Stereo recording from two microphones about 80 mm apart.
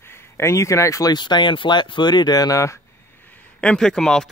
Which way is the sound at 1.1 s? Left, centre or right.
Left.